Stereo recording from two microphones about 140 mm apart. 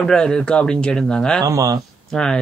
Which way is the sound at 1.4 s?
25° right (ahead or behind).